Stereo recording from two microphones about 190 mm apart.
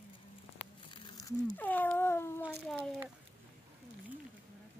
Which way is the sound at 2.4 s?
Centre (ahead or behind).